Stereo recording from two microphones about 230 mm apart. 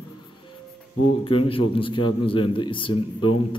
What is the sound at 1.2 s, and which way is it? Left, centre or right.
A man's voice, left.